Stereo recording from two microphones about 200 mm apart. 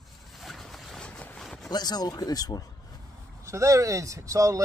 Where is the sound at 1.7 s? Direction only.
20° left (ahead or behind).